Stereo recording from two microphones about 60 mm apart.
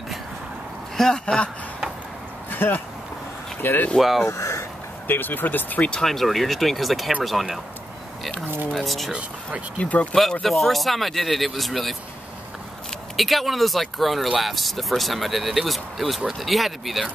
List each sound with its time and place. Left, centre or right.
0.9 s speech: centre
2.5 s speech: left
4.3 s a sound: left
5.0 s speech: left
5.9 s speech: centre
9.8 s speech: left
10.4 s speech: centre
13.1 s speech: centre